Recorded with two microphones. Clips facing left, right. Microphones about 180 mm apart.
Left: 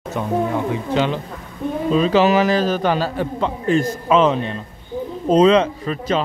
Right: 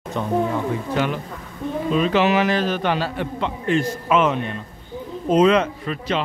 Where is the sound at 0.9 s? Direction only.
25° left (ahead or behind).